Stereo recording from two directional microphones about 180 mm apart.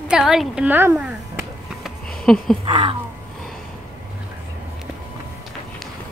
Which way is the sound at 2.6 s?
30° right (ahead or behind).